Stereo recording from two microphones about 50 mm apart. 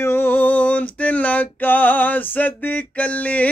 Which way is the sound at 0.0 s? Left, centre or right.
Left.